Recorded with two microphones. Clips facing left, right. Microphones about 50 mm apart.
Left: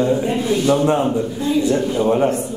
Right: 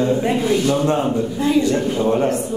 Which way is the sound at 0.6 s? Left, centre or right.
Centre.